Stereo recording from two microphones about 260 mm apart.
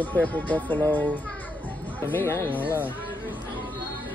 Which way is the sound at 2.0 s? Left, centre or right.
Centre.